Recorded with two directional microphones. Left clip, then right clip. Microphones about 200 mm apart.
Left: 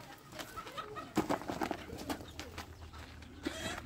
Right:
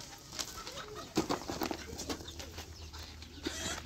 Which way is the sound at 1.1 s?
Centre (ahead or behind).